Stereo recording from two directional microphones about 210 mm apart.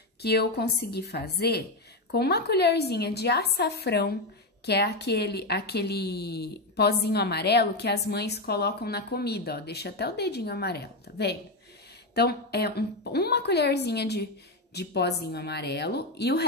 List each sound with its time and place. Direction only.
0.2 s a woman's voice: 50° left (ahead or behind)